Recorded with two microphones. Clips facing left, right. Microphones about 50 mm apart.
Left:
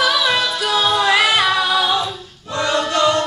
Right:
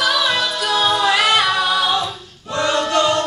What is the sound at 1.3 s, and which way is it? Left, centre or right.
A capella, centre.